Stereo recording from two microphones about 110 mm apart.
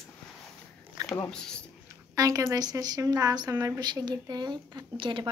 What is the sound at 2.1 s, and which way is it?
A woman's voice, 30° right (ahead or behind).